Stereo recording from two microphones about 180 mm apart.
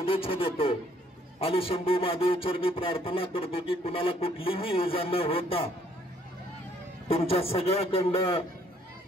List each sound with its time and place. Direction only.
0.0 s speech: 30° left (ahead or behind)
7.1 s speech: 30° left (ahead or behind)